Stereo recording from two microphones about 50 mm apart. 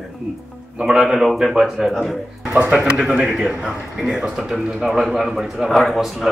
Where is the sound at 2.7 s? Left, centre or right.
Centre.